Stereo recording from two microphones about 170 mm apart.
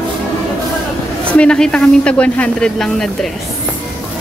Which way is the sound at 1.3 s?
5° left (ahead or behind).